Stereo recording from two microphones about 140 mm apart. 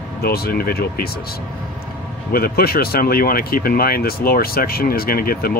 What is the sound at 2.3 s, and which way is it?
Speech, 90° left.